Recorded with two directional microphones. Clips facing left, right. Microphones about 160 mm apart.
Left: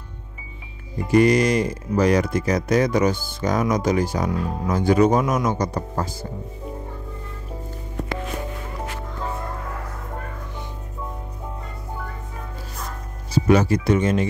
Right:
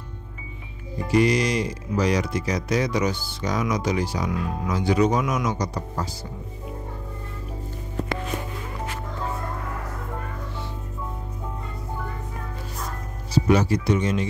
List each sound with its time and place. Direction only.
1.1 s speech: 50° left (ahead or behind)
13.3 s speech: 50° left (ahead or behind)